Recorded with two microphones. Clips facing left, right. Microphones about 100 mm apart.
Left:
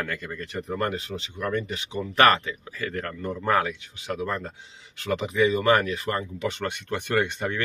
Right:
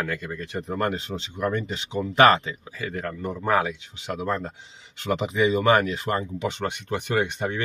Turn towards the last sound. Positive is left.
turn(degrees=-15)  # may be behind; listen again after turning